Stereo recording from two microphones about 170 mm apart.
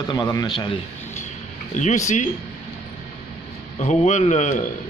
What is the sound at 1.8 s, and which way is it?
Speech, 45° left (ahead or behind).